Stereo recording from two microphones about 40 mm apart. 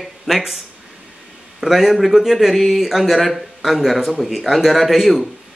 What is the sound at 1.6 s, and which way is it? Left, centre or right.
Speech, centre.